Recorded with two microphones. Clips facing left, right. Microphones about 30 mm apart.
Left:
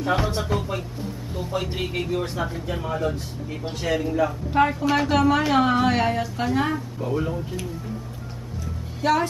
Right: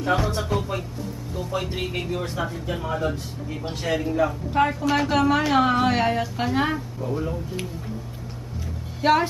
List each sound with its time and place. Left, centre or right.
0.4 s speech: centre
7.0 s speech: centre
9.0 s a woman's voice: right